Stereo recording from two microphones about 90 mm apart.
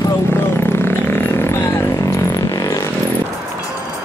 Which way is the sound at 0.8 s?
25° left (ahead or behind).